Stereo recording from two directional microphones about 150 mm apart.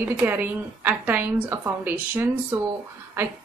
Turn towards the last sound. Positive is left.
turn(degrees=-15)  # may be behind; listen again after turning